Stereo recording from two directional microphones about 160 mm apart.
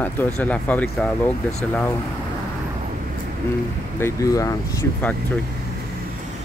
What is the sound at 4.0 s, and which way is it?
Speech, 20° left (ahead or behind).